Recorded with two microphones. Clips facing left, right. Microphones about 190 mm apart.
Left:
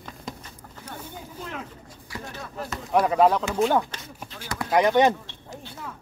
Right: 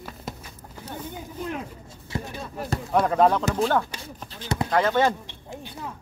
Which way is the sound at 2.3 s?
20° right (ahead or behind).